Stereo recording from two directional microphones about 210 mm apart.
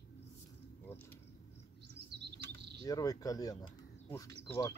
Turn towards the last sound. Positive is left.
turn(degrees=15)  # may be behind; listen again after turning